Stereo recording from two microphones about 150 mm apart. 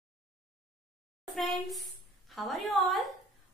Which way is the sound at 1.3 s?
Centre (ahead or behind).